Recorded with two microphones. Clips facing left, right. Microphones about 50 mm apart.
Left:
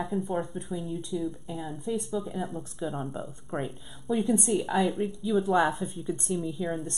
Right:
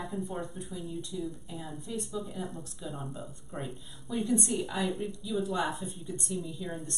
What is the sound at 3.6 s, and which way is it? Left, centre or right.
Speech, left.